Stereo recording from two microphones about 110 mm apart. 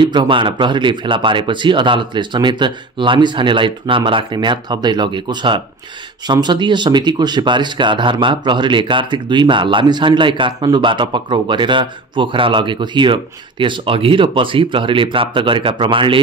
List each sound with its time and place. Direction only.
0.0 s speech: 45° right (ahead or behind)